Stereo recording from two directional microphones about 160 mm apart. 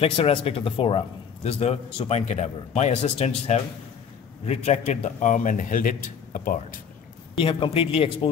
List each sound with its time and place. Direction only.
0.0 s a man's voice: 35° left (ahead or behind); by 6.6 s 60° left (ahead or behind)
7.3 s a man's voice: 35° left (ahead or behind)